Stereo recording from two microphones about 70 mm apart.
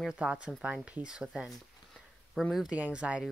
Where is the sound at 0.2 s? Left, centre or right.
Centre.